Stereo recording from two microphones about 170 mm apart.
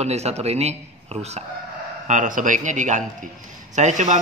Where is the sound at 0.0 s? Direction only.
40° right (ahead or behind).